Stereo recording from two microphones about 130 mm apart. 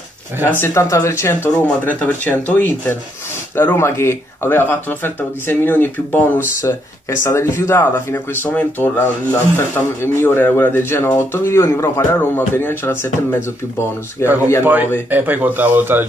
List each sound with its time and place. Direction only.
0.5 s speech: 20° left (ahead or behind)
14.6 s speech: 15° right (ahead or behind)